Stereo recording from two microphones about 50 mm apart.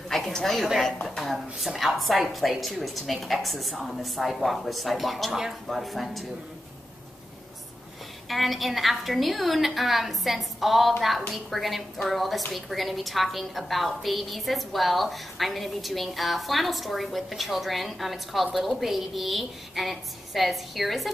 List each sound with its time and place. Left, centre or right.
0.1 s a woman's voice: centre
8.3 s a woman's voice: centre